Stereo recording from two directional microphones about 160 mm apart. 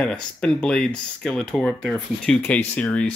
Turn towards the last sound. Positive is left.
turn(degrees=5)  # may be behind; listen again after turning